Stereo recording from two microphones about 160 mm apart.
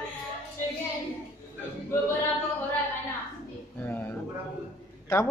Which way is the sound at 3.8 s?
15° left (ahead or behind).